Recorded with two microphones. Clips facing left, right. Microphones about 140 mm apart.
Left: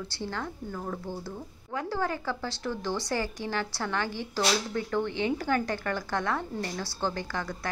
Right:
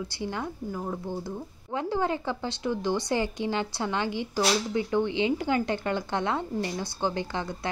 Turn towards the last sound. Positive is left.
turn(degrees=-20)  # may be behind; listen again after turning